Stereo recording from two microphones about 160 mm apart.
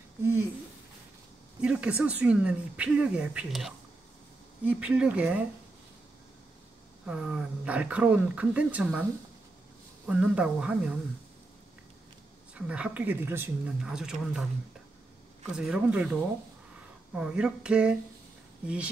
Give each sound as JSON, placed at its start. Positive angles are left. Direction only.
{"t": 1.6, "sound": "speech", "side_deg": -5}
{"t": 7.1, "sound": "speech", "side_deg": -5}
{"t": 10.0, "sound": "speech", "side_deg": -5}
{"t": 12.5, "sound": "speech", "side_deg": -5}
{"t": 13.8, "sound": "speech", "side_deg": -5}
{"t": 15.5, "sound": "speech", "side_deg": -5}